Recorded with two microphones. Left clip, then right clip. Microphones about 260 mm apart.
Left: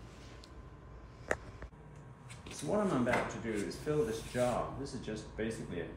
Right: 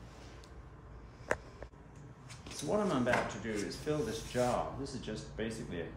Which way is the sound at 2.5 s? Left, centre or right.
Centre.